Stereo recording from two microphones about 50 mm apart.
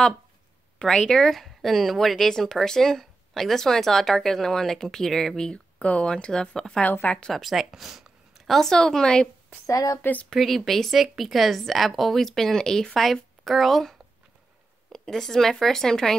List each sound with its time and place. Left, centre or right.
0.7 s speech: centre
5.5 s speech: left
6.8 s speech: left
7.3 s speech: centre
8.5 s speech: centre
10.3 s a woman's voice: centre